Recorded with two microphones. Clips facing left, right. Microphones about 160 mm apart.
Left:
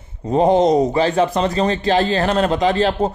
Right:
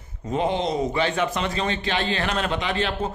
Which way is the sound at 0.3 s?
40° left (ahead or behind).